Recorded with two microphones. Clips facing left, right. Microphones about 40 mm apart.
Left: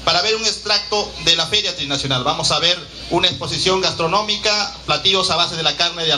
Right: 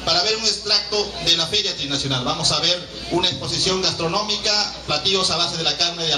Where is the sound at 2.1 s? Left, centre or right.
Left.